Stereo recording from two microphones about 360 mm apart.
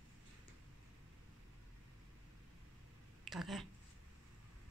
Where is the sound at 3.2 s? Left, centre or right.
Centre.